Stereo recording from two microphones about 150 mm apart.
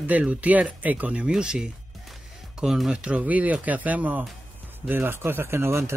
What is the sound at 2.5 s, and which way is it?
Speech, 5° right (ahead or behind).